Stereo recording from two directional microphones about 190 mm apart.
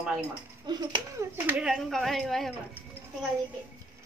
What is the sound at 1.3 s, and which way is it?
Speech, 5° right (ahead or behind).